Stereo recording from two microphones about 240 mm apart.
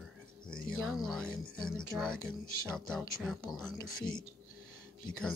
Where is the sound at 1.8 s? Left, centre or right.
Centre.